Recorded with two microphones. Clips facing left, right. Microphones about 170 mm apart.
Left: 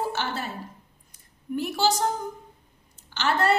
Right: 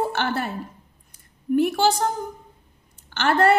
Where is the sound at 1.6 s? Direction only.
55° right (ahead or behind).